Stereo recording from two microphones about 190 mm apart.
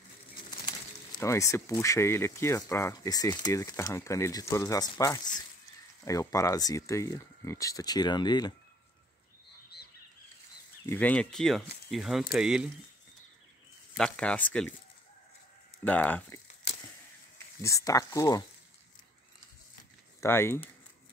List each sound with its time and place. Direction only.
1.2 s speech: 15° left (ahead or behind)
10.9 s speech: 10° left (ahead or behind)
13.9 s speech: 5° left (ahead or behind)
15.8 s speech: 10° left (ahead or behind)
17.6 s speech: 15° left (ahead or behind)
20.2 s speech: 15° left (ahead or behind)